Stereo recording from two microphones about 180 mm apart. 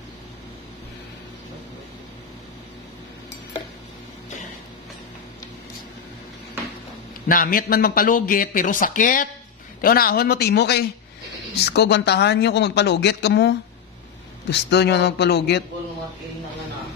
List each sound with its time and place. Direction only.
7.2 s speech: 50° left (ahead or behind); by 15.6 s 70° left (ahead or behind)